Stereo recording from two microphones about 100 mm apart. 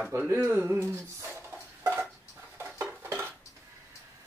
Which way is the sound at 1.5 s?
20° right (ahead or behind).